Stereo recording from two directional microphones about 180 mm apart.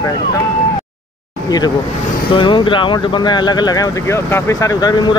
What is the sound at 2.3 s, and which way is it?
Speech, 25° left (ahead or behind).